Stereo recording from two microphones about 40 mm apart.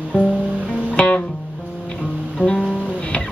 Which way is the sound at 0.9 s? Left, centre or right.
Left.